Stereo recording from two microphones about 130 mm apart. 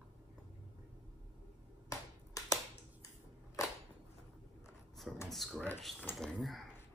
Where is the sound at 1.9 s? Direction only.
25° left (ahead or behind).